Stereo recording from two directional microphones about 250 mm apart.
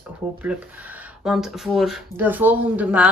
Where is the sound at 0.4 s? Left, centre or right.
Centre.